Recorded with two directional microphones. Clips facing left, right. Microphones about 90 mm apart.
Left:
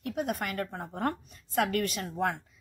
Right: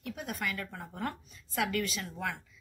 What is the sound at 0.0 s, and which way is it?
A woman's voice, 50° left (ahead or behind).